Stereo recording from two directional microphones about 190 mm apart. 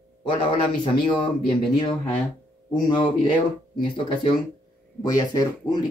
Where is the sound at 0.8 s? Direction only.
25° left (ahead or behind).